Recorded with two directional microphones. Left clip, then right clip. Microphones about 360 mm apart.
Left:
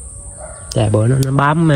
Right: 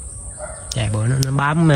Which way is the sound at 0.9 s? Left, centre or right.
Centre.